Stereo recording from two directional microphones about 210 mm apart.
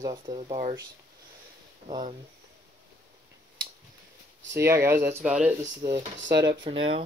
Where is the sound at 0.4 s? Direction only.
30° right (ahead or behind).